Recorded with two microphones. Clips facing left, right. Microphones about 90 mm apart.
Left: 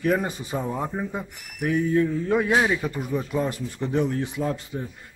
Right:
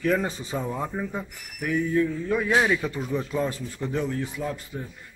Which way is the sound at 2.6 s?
10° left (ahead or behind).